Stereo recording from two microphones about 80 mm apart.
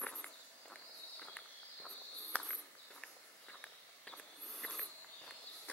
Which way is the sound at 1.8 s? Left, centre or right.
Centre.